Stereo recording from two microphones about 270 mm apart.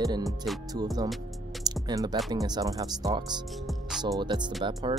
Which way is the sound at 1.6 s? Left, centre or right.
Centre.